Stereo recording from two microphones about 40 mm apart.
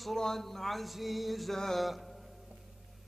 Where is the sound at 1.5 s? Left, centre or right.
Centre.